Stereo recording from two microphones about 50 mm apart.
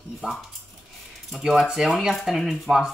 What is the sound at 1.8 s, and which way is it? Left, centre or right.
Speech, centre.